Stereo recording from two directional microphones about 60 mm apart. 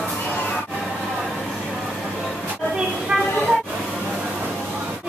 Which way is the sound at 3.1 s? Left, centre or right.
Centre.